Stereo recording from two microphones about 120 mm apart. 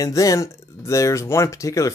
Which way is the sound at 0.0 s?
30° left (ahead or behind).